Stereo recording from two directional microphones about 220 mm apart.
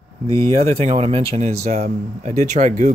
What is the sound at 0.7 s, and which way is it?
Speech, 30° right (ahead or behind).